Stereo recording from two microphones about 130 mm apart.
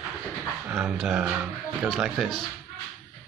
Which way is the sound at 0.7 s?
5° right (ahead or behind).